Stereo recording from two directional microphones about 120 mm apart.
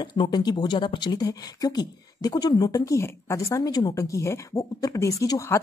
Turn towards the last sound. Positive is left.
turn(degrees=25)  # may be behind; listen again after turning